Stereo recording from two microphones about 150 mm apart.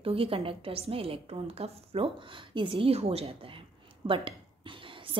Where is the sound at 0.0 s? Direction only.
40° right (ahead or behind).